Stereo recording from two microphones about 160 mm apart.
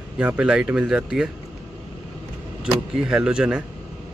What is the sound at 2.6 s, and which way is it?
Speech, 5° right (ahead or behind).